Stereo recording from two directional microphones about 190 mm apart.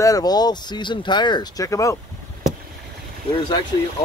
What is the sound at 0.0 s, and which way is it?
Speech, 20° left (ahead or behind).